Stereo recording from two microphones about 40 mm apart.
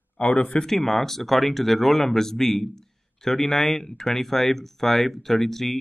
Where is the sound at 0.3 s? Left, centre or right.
Left.